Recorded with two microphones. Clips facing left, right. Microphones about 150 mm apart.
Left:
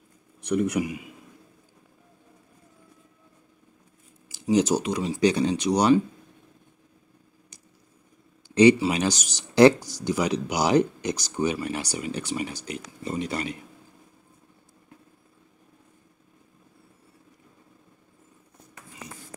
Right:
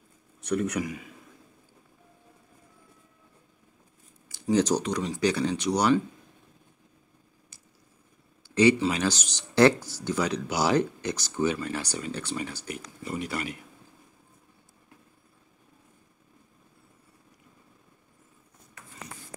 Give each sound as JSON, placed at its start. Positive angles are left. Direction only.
{"t": 0.5, "sound": "speech", "side_deg": 10}
{"t": 4.3, "sound": "speech", "side_deg": 10}
{"t": 8.5, "sound": "speech", "side_deg": 20}